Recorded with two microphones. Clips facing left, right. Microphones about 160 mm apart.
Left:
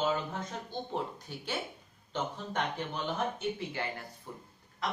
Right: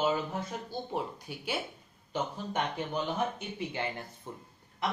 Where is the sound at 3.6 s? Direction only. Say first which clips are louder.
Right 2 dB; 20° right (ahead or behind).